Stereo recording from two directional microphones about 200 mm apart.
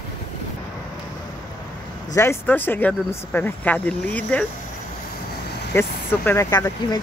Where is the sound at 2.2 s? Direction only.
10° left (ahead or behind).